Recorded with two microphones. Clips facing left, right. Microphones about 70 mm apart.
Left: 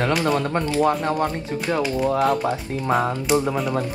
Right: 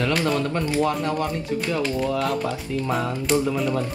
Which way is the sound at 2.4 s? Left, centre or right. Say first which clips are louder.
Left 2 dB; left.